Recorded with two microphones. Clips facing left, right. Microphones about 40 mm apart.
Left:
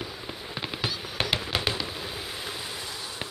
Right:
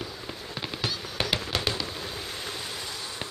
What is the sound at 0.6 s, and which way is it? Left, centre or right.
Fireworks, centre.